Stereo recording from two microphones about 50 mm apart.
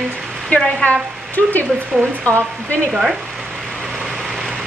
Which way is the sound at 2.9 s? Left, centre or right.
Centre.